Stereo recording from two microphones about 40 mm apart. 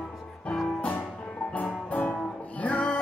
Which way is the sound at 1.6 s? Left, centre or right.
Left.